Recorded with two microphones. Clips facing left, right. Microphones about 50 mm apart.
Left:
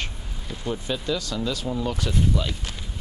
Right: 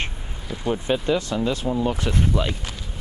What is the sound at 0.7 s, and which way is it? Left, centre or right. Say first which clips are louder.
Speech: right 5 dB; right.